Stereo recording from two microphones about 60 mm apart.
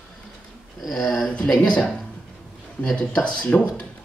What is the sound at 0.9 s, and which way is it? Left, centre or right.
Speech, left.